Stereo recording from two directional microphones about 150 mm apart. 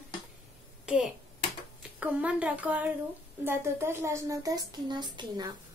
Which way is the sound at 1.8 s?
10° right (ahead or behind).